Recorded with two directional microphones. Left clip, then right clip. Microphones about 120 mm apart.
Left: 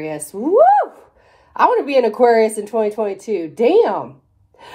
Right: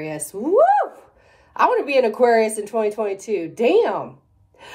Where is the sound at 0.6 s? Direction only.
35° left (ahead or behind).